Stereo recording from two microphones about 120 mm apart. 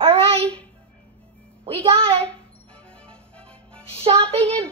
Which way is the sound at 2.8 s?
10° left (ahead or behind).